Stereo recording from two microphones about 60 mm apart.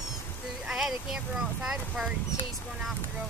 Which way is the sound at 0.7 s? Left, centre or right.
Centre.